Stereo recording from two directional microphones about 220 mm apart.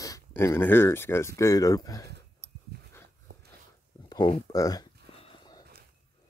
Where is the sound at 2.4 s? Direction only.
30° right (ahead or behind).